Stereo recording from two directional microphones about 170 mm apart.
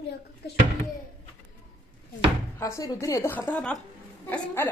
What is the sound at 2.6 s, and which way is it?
A woman's voice, 20° left (ahead or behind).